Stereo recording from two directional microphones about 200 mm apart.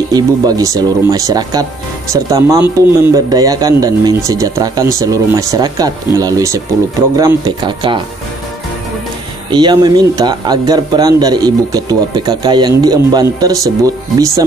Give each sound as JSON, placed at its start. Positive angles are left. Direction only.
{"t": 0.1, "sound": "speech", "side_deg": -20}
{"t": 9.5, "sound": "speech", "side_deg": -20}